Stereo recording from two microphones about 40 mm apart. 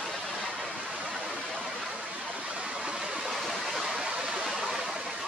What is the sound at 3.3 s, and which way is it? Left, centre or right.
Stream, centre.